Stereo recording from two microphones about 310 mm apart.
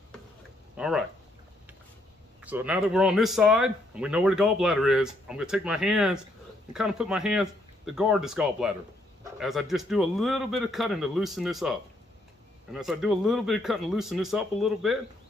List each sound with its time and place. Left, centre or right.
0.7 s speech: centre
2.4 s speech: centre